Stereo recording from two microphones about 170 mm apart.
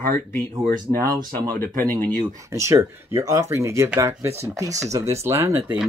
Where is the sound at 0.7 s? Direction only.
25° right (ahead or behind).